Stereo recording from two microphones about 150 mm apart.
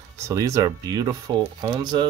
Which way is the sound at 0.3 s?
20° right (ahead or behind).